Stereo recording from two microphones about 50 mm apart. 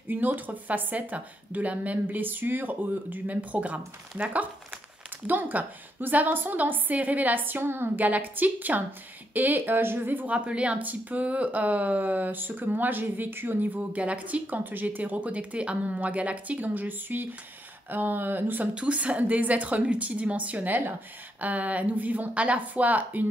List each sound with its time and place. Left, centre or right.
0.1 s speech: right
8.0 s speech: right
10.3 s speech: right
13.9 s speech: right
18.8 s a woman's voice: right